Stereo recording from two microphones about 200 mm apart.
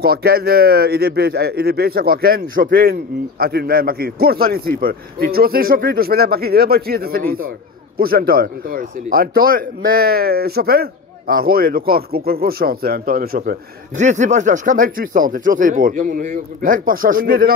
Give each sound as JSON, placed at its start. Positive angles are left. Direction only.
{"t": 0.0, "sound": "speech", "side_deg": -50}